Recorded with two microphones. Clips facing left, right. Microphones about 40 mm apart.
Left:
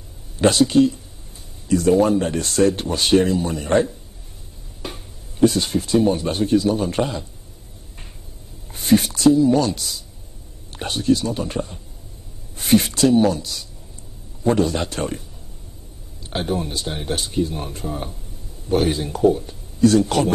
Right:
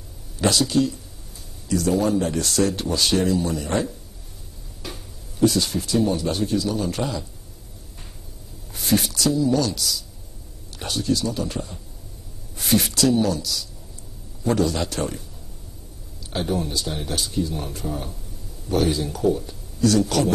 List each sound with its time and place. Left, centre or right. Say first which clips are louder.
0.4 s speech: left 5 dB; left
8.7 s speech: left 5 dB; centre
16.4 s speech: even; left